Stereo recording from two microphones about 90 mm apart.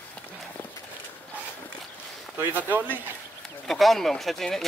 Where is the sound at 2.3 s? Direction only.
20° right (ahead or behind).